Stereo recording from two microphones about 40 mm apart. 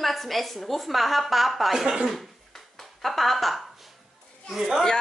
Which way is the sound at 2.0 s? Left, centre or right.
Centre.